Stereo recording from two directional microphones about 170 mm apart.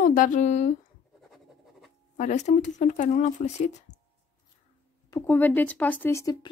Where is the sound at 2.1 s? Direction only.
45° left (ahead or behind).